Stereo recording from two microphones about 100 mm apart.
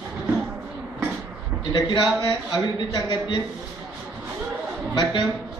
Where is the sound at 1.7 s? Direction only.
45° left (ahead or behind).